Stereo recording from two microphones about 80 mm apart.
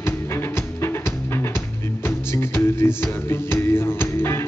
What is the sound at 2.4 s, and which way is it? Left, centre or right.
Music, left.